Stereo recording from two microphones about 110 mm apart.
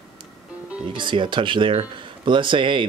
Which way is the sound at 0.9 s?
45° right (ahead or behind).